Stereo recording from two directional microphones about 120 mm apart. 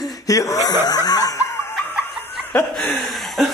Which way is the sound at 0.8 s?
35° left (ahead or behind).